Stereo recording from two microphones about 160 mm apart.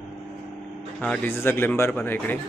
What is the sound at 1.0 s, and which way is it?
A man's voice, 10° left (ahead or behind).